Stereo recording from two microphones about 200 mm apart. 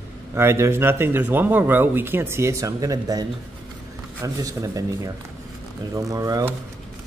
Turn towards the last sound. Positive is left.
turn(degrees=-15)  # may be behind; listen again after turning